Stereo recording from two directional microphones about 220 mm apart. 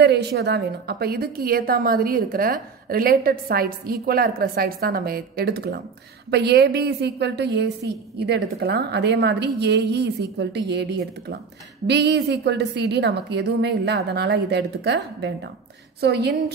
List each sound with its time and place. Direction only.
0.0 s a woman's voice: 50° right (ahead or behind)